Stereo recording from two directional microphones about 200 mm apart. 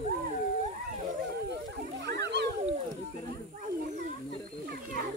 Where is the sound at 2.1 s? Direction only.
60° right (ahead or behind).